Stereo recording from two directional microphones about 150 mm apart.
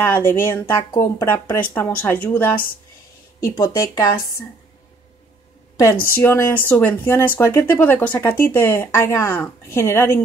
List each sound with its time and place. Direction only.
0.0 s speech: 15° left (ahead or behind)
6.1 s speech: 15° left (ahead or behind)